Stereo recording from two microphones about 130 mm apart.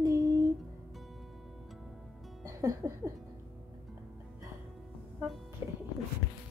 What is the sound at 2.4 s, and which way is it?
Music, 25° right (ahead or behind).